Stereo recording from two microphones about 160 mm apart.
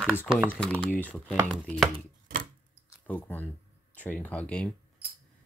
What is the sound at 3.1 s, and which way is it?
Speech, 10° left (ahead or behind).